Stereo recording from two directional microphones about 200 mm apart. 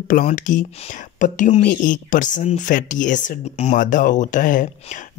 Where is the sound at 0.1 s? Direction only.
40° left (ahead or behind).